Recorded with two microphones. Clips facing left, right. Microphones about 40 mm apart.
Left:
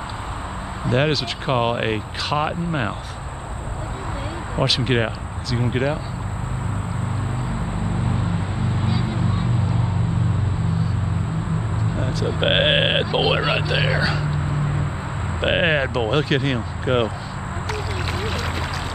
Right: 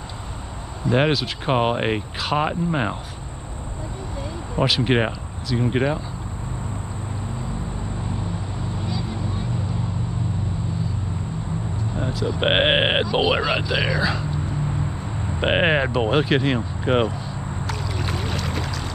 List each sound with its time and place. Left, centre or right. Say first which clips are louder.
0.9 s speech: even; centre
4.6 s speech: right 1 dB; centre
8.8 s a sound: left 4 dB; left
12.4 s speech: even; centre
13.0 s speech: even; centre
15.4 s speech: even; centre
17.6 s a sound: left 2 dB; centre